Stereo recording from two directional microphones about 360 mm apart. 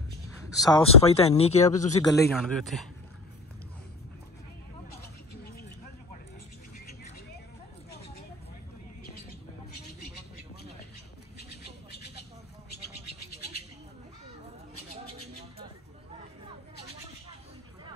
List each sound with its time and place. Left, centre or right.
0.5 s speech: centre
2.1 s a man's voice: centre